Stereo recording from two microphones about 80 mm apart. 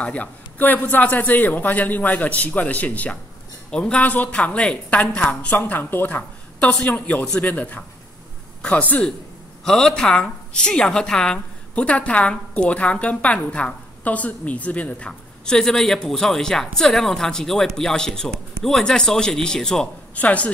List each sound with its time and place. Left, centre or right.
0.0 s a man's voice: centre
9.7 s a woman's voice: centre